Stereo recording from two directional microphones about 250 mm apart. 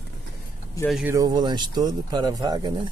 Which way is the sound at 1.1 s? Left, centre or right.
Centre.